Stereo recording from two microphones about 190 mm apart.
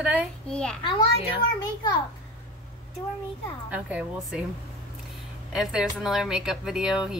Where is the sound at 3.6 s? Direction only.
5° right (ahead or behind).